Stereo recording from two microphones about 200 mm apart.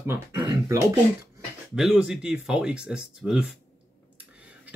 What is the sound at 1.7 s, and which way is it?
Speech, 5° right (ahead or behind).